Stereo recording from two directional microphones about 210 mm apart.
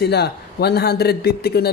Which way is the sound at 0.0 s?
50° left (ahead or behind).